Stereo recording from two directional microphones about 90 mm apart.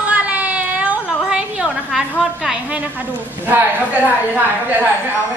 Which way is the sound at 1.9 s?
Centre (ahead or behind).